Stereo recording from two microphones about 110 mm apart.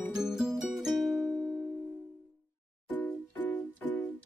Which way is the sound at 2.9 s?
15° left (ahead or behind).